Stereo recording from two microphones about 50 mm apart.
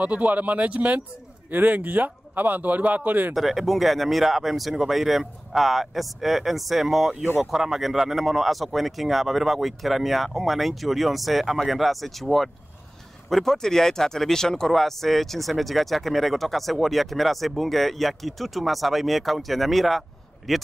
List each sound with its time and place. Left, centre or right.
0.0 s a man's voice: right
3.3 s speech: centre